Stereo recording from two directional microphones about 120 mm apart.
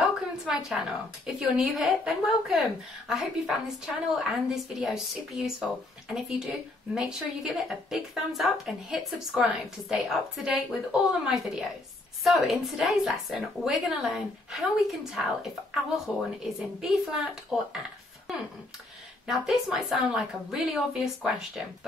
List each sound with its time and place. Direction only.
0.0 s a woman's voice: centre (ahead or behind)